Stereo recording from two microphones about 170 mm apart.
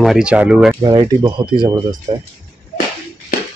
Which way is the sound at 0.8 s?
25° right (ahead or behind).